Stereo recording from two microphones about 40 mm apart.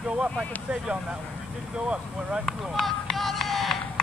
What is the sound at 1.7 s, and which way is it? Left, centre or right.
Speech, right.